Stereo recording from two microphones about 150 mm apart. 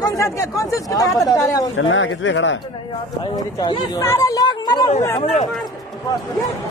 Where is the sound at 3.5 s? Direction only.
25° left (ahead or behind).